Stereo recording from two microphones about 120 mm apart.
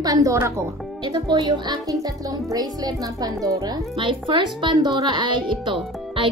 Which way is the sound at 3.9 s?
45° right (ahead or behind).